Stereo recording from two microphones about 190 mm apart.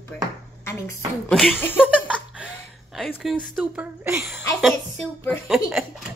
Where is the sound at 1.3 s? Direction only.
Centre (ahead or behind).